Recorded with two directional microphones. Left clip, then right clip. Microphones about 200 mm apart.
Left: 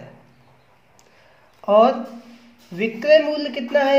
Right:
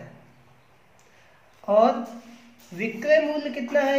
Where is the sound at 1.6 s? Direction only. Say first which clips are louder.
Left 6 dB; 40° left (ahead or behind).